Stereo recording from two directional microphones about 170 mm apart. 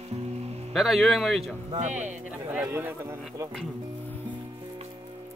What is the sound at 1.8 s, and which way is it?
Speech, 45° right (ahead or behind).